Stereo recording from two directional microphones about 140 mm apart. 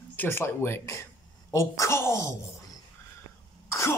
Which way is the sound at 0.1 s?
15° left (ahead or behind).